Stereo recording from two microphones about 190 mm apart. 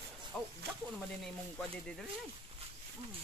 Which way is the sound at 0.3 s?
Centre (ahead or behind).